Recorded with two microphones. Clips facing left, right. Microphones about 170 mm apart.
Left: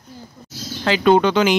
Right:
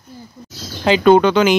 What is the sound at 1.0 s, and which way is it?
Speech, 60° right (ahead or behind).